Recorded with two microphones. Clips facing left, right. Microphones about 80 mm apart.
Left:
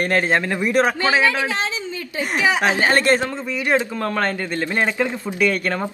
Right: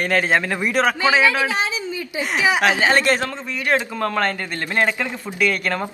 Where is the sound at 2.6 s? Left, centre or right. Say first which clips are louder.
Even; left.